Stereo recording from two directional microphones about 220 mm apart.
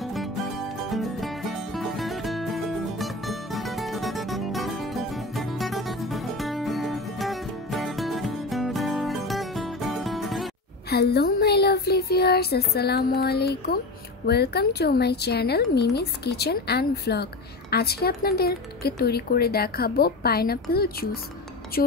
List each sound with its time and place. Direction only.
0.0 s music: centre (ahead or behind)
10.9 s speech: 45° left (ahead or behind)